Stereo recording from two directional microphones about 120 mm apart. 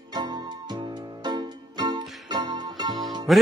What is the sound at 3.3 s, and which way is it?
Music, centre (ahead or behind).